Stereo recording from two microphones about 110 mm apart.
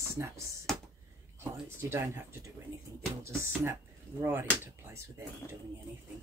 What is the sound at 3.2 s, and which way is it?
Speech, 20° right (ahead or behind).